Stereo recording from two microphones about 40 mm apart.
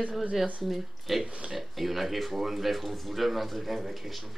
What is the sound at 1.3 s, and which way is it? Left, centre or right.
Speech, right.